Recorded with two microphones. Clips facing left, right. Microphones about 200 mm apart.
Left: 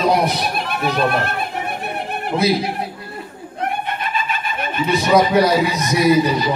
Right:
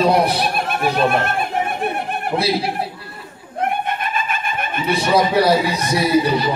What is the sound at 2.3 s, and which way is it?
Speech, 30° right (ahead or behind).